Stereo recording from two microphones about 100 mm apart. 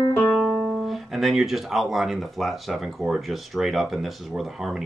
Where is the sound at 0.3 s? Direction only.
Centre (ahead or behind).